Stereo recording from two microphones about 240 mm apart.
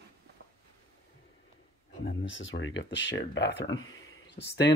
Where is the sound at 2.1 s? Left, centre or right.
Left.